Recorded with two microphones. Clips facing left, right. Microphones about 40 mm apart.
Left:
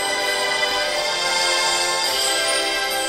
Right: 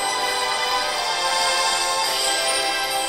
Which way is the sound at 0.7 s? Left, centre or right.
Right.